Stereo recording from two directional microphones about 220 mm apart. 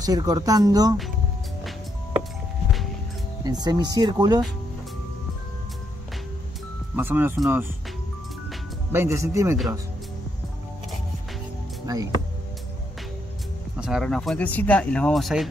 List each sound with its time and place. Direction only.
0.0 s speech: 15° right (ahead or behind)
3.4 s speech: 20° right (ahead or behind)
7.0 s speech: 10° right (ahead or behind)
8.9 s speech: 10° right (ahead or behind)
11.8 s speech: 15° right (ahead or behind)
13.7 s speech: centre (ahead or behind)